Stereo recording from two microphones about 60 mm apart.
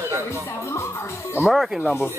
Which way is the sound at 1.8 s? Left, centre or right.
Left.